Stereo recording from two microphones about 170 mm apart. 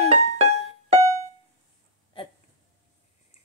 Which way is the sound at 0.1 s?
40° right (ahead or behind).